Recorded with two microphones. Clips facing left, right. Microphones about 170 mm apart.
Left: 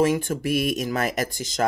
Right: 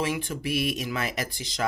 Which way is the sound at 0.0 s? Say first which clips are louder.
Left 7 dB; 45° left (ahead or behind).